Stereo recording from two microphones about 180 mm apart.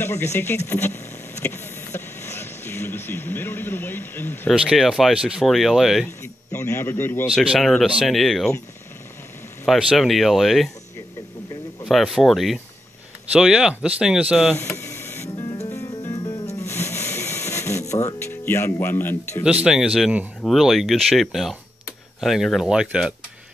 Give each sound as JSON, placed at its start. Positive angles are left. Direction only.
{"t": 0.0, "sound": "speech", "side_deg": 15}
{"t": 1.4, "sound": "vehicle", "side_deg": 10}
{"t": 4.6, "sound": "speech", "side_deg": -5}
{"t": 6.2, "sound": "a man's voice", "side_deg": 15}
{"t": 7.2, "sound": "speech", "side_deg": 0}
{"t": 9.7, "sound": "speech", "side_deg": 0}
{"t": 11.8, "sound": "speech", "side_deg": 0}
{"t": 14.6, "sound": "a sound", "side_deg": 15}
{"t": 15.6, "sound": "music", "side_deg": 15}
{"t": 18.2, "sound": "speech", "side_deg": 10}
{"t": 19.4, "sound": "speech", "side_deg": -5}